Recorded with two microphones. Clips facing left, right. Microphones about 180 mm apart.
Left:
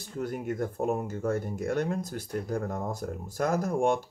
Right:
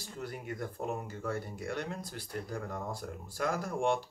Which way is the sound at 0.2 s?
50° left (ahead or behind).